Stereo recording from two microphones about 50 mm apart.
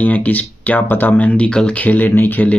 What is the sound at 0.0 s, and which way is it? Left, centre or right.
Speech, left.